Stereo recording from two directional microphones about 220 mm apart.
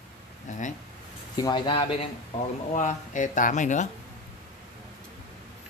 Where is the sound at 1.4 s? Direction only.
20° left (ahead or behind).